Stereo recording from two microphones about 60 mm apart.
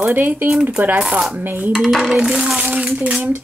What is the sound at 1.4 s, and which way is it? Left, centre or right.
Speech, right.